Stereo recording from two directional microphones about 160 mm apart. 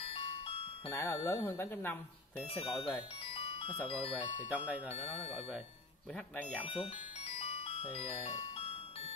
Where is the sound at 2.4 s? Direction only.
35° left (ahead or behind).